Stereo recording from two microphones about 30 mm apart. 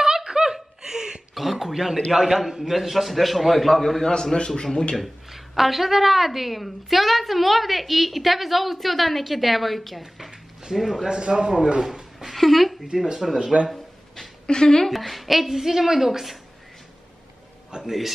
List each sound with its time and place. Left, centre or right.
0.0 s a sound: right
1.3 s throat clearing: centre
2.1 s a woman's voice: centre
4.0 s a man's voice: centre
5.3 s a woman's voice: centre
11.1 s a man's voice: right
11.8 s cat: centre
12.4 s a woman's voice: centre
12.9 s speech: centre
13.5 s speech: right
14.4 s a woman's voice: left
14.9 s a woman's voice: centre
17.7 s a man's voice: right